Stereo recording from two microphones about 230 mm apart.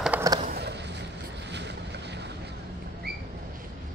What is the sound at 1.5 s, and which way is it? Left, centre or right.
Boat, right.